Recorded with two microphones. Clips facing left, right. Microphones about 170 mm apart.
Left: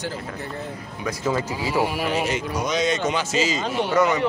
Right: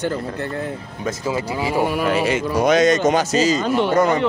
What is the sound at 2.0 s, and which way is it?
A man's voice, 55° right (ahead or behind).